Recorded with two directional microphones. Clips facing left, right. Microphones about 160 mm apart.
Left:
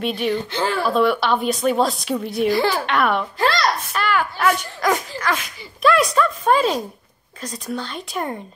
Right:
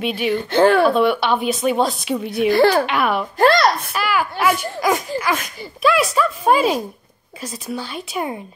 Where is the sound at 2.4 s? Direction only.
60° right (ahead or behind).